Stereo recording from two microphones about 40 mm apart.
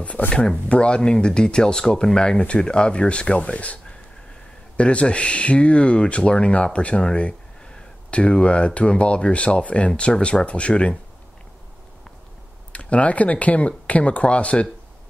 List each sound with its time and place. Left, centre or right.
0.2 s speech: left
0.7 s speech: left
12.7 s speech: left